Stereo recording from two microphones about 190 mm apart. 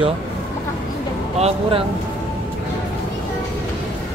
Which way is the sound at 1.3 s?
35° right (ahead or behind).